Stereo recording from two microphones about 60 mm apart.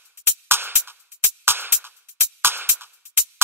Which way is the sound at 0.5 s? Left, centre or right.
Right.